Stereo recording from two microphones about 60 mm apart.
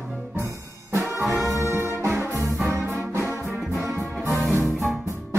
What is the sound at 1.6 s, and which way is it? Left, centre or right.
Music, right.